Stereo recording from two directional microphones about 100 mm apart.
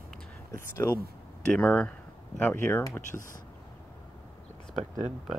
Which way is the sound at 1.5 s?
10° left (ahead or behind).